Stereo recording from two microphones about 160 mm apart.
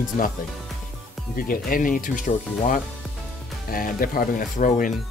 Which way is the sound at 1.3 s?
60° left (ahead or behind).